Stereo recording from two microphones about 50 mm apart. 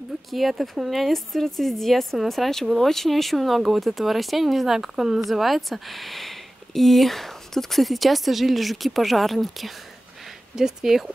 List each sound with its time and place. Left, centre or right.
0.3 s speech: centre